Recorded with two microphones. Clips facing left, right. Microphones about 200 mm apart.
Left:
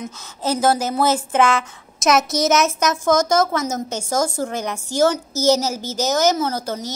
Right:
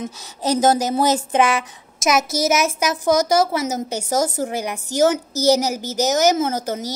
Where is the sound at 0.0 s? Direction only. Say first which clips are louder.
Right 1 dB; 20° right (ahead or behind).